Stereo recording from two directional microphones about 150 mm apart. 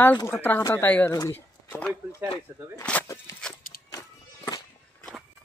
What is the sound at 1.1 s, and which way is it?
Speech, 20° left (ahead or behind).